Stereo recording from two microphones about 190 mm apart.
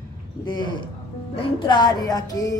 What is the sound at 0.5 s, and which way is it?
Music, 25° left (ahead or behind).